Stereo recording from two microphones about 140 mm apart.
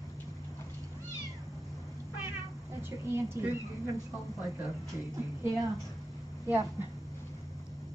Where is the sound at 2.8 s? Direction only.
20° right (ahead or behind).